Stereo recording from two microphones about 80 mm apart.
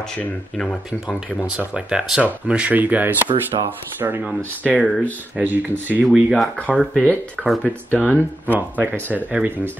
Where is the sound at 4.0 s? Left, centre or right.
Right.